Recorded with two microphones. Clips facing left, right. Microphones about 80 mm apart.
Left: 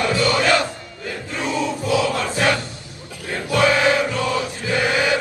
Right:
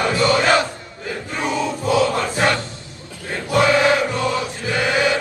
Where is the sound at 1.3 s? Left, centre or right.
Right.